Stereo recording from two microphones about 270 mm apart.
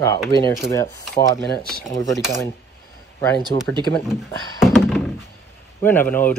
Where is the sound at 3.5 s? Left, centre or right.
Centre.